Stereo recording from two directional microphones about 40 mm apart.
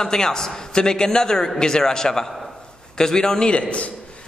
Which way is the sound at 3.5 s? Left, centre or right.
Left.